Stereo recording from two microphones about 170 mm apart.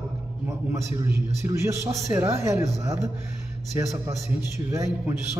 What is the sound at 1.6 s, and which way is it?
Speech, 20° right (ahead or behind).